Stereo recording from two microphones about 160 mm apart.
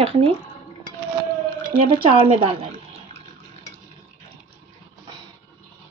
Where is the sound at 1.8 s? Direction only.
35° right (ahead or behind).